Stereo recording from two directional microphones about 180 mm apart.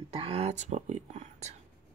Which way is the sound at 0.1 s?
35° right (ahead or behind).